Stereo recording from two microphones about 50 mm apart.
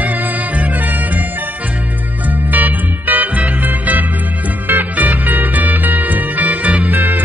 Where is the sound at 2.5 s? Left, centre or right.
Right.